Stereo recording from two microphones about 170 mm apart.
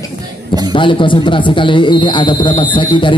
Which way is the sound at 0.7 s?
30° left (ahead or behind).